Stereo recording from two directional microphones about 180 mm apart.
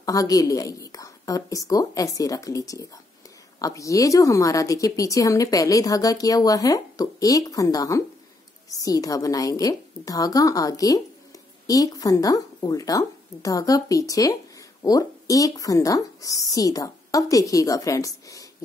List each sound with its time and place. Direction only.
0.0 s a woman's voice: 20° left (ahead or behind)